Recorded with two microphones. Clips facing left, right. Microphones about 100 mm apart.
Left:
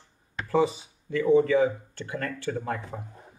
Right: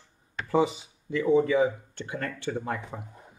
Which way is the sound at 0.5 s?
20° right (ahead or behind).